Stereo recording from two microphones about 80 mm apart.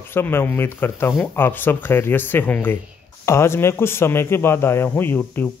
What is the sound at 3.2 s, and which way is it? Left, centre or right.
Speech, left.